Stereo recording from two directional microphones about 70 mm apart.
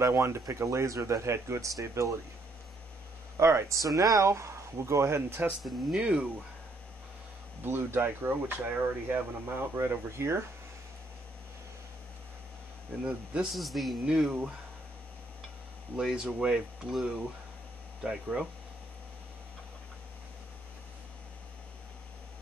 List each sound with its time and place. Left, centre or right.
0.0 s speech: right
3.3 s speech: right
5.6 s a man's voice: centre
5.9 s speech: centre
7.6 s speech: right
13.0 s speech: centre
13.5 s a man's voice: centre
16.0 s speech: centre